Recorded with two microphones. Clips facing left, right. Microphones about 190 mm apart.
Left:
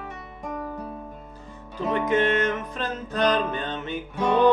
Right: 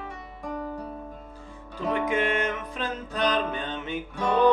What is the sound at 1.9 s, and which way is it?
Music, 10° right (ahead or behind).